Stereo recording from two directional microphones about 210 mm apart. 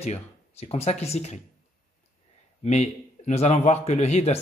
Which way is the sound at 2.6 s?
30° left (ahead or behind).